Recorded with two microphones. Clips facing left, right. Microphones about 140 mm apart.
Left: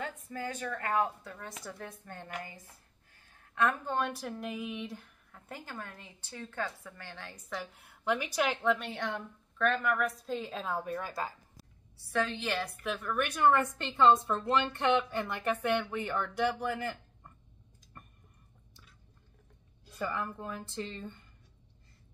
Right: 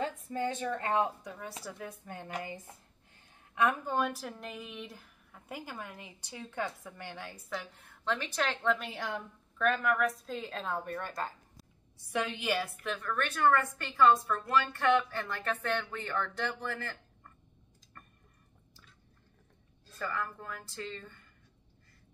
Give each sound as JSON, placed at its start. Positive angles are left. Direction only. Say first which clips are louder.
{"t": 0.0, "sound": "a woman's voice", "louder": "right 5 dB", "side_deg": -25}
{"t": 2.4, "sound": "a woman's voice", "louder": "right 6 dB", "side_deg": -20}
{"t": 7.8, "sound": "a woman's voice", "louder": "left 4 dB", "side_deg": 10}
{"t": 8.7, "sound": "a woman's voice", "louder": "left 1 dB", "side_deg": 0}
{"t": 12.1, "sound": "a woman's voice", "louder": "even", "side_deg": -15}
{"t": 17.9, "sound": "a sound", "louder": "left 2 dB", "side_deg": 20}
{"t": 19.9, "sound": "a woman's voice", "louder": "left 1 dB", "side_deg": 15}